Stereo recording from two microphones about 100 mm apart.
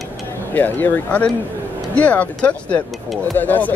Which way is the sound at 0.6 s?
20° left (ahead or behind).